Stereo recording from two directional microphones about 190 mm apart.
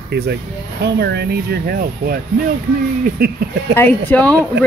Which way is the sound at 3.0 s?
55° right (ahead or behind).